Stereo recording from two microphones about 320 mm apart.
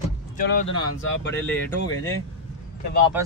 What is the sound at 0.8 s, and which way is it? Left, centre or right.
Speech, left.